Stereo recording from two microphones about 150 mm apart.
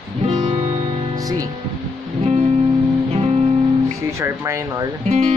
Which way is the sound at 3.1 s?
45° right (ahead or behind).